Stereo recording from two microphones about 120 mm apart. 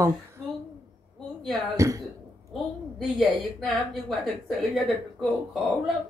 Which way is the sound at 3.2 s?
Centre (ahead or behind).